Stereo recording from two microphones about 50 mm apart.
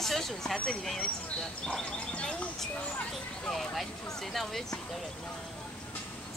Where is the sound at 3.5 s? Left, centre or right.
Centre.